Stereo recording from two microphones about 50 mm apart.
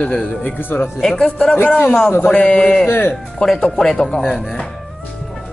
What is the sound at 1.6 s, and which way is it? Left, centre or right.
Speech, left.